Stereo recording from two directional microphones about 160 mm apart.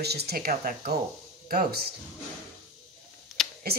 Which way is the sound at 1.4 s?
75° right (ahead or behind).